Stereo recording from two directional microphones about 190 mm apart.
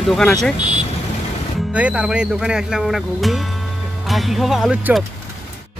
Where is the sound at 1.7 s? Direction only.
5° right (ahead or behind).